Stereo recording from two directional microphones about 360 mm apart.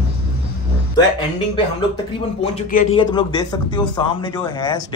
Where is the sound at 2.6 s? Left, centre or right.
Centre.